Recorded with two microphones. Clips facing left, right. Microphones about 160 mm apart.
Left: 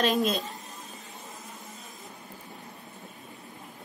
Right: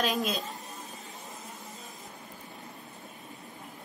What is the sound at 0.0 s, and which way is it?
Speech, centre (ahead or behind).